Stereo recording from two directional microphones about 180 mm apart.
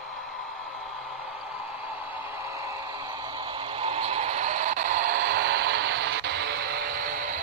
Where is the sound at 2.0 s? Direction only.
10° right (ahead or behind).